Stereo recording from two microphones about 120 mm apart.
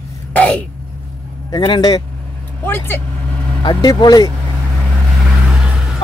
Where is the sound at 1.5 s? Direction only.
40° left (ahead or behind).